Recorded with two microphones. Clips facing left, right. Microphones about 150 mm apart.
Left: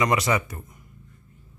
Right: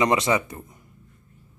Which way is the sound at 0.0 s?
25° right (ahead or behind).